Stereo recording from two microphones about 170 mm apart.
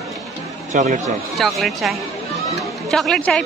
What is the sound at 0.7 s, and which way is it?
Speech, 45° right (ahead or behind).